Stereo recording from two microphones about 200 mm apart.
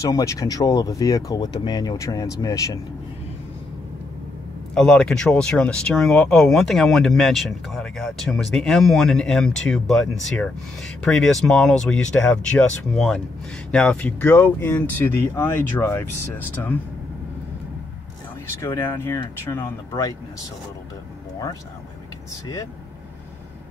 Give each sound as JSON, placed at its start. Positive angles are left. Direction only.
{"t": 0.0, "sound": "speech", "side_deg": 15}
{"t": 4.7, "sound": "speech", "side_deg": 0}
{"t": 11.1, "sound": "speech", "side_deg": 5}
{"t": 18.6, "sound": "speech", "side_deg": 10}